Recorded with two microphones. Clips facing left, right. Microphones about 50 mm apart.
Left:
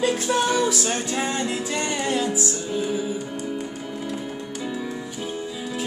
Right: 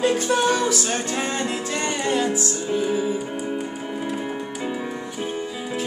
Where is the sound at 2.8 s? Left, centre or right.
Centre.